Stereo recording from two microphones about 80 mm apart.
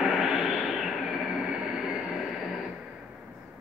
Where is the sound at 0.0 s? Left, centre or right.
Centre.